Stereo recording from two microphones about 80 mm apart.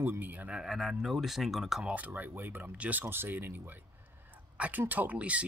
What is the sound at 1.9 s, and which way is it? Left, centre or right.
Speech, right.